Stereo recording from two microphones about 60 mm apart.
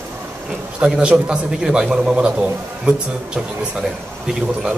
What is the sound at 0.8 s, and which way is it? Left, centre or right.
Speech, centre.